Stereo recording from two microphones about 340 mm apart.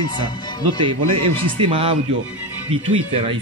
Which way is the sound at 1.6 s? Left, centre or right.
Centre.